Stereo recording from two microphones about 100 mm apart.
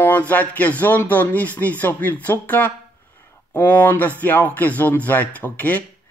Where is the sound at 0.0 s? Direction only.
15° left (ahead or behind).